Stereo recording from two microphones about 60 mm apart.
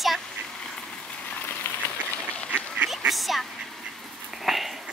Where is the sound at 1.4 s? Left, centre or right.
Left.